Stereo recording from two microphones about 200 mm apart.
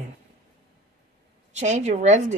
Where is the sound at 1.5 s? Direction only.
35° right (ahead or behind).